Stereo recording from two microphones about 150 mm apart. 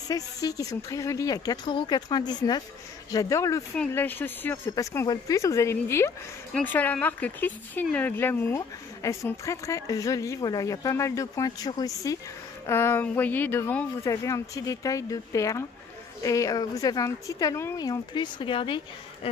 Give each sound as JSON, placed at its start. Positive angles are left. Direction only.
{"t": 0.1, "sound": "speech", "side_deg": 25}
{"t": 3.7, "sound": "speech", "side_deg": 10}
{"t": 19.2, "sound": "a sound", "side_deg": 40}